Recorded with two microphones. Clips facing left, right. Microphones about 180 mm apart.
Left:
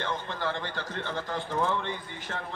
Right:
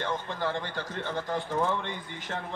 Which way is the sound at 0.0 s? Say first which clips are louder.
Right 1 dB; 15° right (ahead or behind).